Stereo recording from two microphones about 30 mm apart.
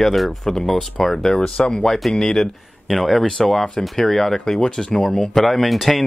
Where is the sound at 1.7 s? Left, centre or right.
Centre.